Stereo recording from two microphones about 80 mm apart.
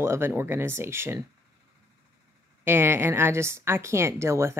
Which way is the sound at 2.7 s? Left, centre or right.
Right.